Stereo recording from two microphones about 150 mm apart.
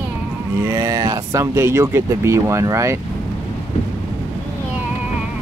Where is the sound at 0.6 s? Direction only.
20° right (ahead or behind).